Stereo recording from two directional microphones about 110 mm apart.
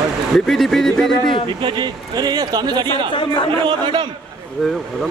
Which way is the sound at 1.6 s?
40° right (ahead or behind).